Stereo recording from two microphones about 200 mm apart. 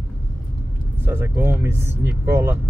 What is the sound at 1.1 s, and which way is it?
Speech, 10° right (ahead or behind).